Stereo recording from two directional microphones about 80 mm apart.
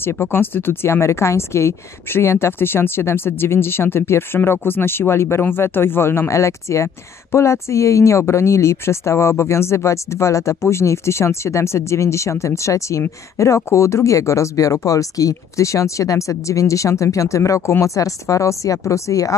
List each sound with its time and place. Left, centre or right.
0.0 s speech: left